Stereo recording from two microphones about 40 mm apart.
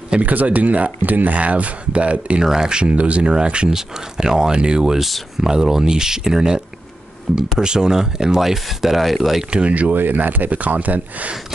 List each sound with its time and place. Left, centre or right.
0.2 s speech: right
2.4 s speech: centre
2.8 s speech: right
8.4 s speech: centre
9.5 s speech: right
10.1 s speech: right